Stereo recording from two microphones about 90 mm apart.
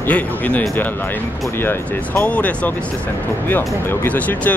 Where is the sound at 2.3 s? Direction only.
15° left (ahead or behind).